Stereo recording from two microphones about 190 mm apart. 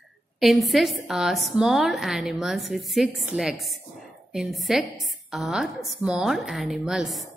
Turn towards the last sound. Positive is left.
turn(degrees=0)  # may be behind; listen again after turning